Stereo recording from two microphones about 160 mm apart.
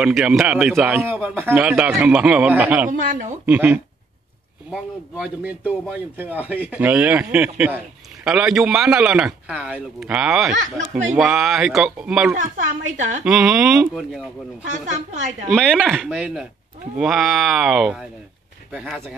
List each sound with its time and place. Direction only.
0.0 s a man's voice: centre (ahead or behind)
2.9 s a woman's voice: 55° right (ahead or behind)
3.4 s speech: 10° right (ahead or behind)
10.5 s a woman's voice: 50° right (ahead or behind)
11.1 s a man's voice: centre (ahead or behind)
14.6 s a woman's voice: 50° right (ahead or behind)
15.5 s a man's voice: 5° left (ahead or behind)
16.1 s a man's voice: 10° right (ahead or behind)